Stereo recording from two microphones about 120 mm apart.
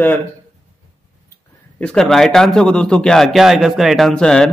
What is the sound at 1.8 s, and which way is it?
A man's voice, 5° left (ahead or behind).